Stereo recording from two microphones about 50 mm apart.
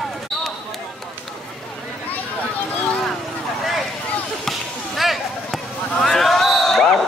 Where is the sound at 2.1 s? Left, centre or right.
Left.